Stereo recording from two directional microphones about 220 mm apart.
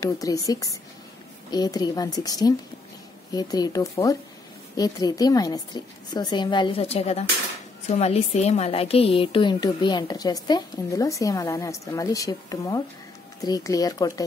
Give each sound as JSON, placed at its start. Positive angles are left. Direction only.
{"t": 0.0, "sound": "a woman's voice", "side_deg": 15}